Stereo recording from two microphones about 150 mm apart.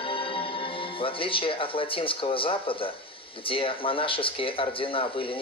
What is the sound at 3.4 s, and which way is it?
Speech, 35° left (ahead or behind).